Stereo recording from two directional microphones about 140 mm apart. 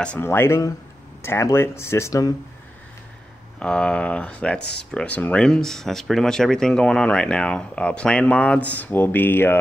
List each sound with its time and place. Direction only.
0.0 s speech: 15° left (ahead or behind)
3.5 s speech: 5° left (ahead or behind)